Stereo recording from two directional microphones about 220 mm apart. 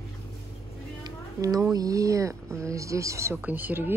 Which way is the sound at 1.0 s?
15° right (ahead or behind).